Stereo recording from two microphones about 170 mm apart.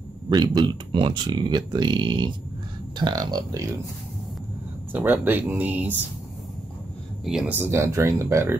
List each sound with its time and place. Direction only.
0.3 s speech: 25° right (ahead or behind)
4.9 s speech: 10° right (ahead or behind)
7.2 s speech: 5° right (ahead or behind)